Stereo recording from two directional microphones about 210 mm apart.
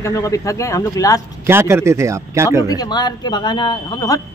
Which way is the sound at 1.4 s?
10° right (ahead or behind).